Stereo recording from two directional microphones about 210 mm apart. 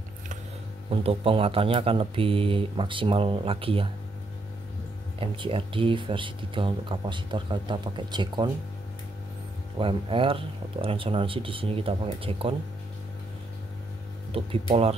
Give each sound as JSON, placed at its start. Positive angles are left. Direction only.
{"t": 0.8, "sound": "speech", "side_deg": -25}
{"t": 5.2, "sound": "speech", "side_deg": -25}
{"t": 9.8, "sound": "speech", "side_deg": -25}
{"t": 14.3, "sound": "speech", "side_deg": -25}